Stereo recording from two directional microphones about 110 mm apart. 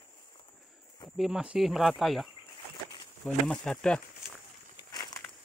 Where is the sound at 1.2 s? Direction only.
5° right (ahead or behind).